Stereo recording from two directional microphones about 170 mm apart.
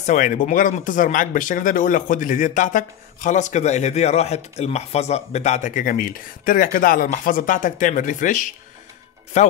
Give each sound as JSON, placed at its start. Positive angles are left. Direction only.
{"t": 0.0, "sound": "speech", "side_deg": 50}